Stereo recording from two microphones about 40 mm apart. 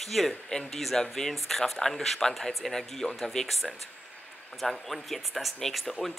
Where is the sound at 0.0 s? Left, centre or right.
Centre.